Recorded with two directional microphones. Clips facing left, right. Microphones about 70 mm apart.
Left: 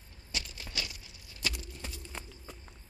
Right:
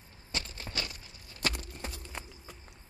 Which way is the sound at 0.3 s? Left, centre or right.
Right.